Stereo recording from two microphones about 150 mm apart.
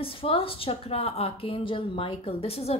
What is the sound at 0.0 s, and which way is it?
A woman's voice, 35° left (ahead or behind).